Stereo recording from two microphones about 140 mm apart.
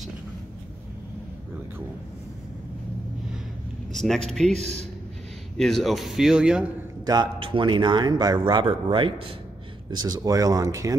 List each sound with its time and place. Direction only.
3.9 s a sound: centre (ahead or behind)
4.5 s speech: 50° right (ahead or behind)
5.6 s speech: centre (ahead or behind)
7.1 s a man's voice: 35° right (ahead or behind)